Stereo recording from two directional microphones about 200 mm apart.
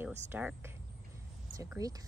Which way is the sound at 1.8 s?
15° right (ahead or behind).